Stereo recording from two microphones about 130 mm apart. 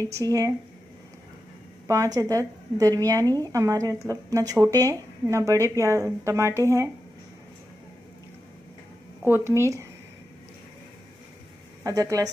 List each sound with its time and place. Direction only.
0.0 s speech: 25° right (ahead or behind)
1.9 s speech: 25° right (ahead or behind)
9.3 s speech: 20° right (ahead or behind)
11.8 s speech: 25° right (ahead or behind)